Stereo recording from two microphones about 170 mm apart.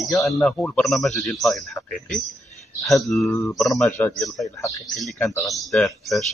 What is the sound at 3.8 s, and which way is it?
Speech, 15° left (ahead or behind).